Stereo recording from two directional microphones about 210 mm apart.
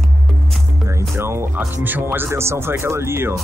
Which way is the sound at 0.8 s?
15° right (ahead or behind).